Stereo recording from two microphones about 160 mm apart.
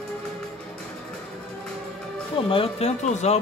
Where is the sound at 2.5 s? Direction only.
35° left (ahead or behind).